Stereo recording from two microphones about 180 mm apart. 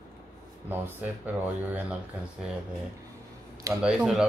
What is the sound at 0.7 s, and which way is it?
A woman's voice, 10° right (ahead or behind).